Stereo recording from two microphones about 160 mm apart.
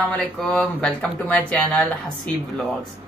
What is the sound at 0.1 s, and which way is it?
Speech, 10° left (ahead or behind).